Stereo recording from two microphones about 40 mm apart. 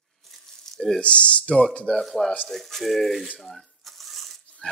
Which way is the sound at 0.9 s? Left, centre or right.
Left.